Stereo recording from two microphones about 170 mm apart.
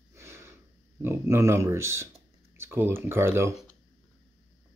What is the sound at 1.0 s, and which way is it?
Speech, 15° right (ahead or behind).